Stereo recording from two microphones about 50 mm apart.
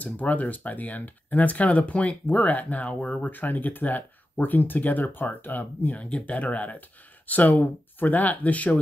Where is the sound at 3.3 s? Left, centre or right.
Left.